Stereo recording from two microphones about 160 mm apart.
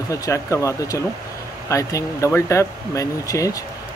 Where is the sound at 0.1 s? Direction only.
20° left (ahead or behind).